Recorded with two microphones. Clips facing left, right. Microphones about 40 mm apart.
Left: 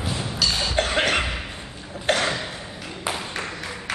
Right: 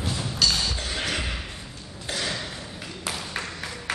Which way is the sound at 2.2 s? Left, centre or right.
Left.